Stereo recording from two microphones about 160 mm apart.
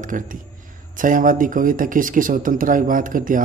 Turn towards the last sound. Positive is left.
turn(degrees=-60)  # may be behind; listen again after turning